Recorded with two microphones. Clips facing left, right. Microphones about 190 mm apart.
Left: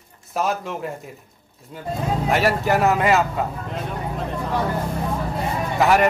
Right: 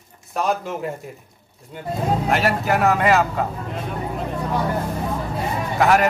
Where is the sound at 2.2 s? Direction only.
Centre (ahead or behind).